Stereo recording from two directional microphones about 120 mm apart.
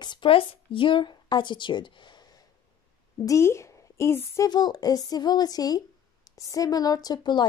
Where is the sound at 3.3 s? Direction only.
25° left (ahead or behind).